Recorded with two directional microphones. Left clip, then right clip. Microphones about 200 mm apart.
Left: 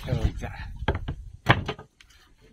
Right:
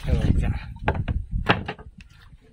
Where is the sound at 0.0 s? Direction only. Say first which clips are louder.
Right 4 dB; 10° right (ahead or behind).